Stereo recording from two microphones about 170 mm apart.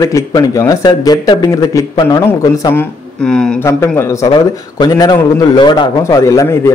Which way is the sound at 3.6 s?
15° left (ahead or behind).